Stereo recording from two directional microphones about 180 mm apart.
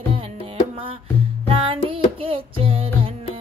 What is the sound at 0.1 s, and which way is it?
Music, 30° right (ahead or behind).